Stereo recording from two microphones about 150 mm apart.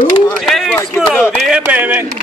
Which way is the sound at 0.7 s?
20° left (ahead or behind).